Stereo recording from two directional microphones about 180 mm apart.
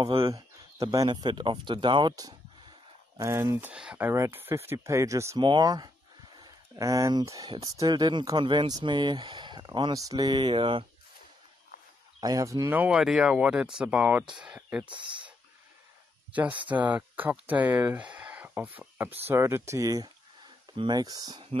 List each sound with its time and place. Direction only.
0.0 s speech: 30° right (ahead or behind)
12.2 s speech: 20° right (ahead or behind)
14.9 s speech: 25° right (ahead or behind)
16.7 s speech: 10° right (ahead or behind); by 21.5 s 25° right (ahead or behind)